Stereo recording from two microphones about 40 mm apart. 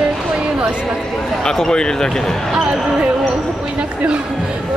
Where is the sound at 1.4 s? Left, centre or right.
Centre.